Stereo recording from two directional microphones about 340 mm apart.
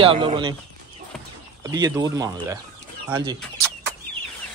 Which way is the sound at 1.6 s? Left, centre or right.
Centre.